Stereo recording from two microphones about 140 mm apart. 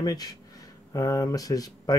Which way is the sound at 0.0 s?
30° left (ahead or behind).